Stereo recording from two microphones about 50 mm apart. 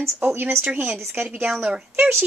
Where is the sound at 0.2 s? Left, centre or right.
Right.